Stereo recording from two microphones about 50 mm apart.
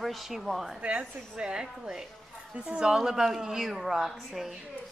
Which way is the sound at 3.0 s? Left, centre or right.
Centre.